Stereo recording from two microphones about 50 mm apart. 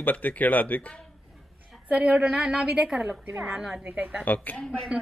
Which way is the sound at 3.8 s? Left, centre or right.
Right.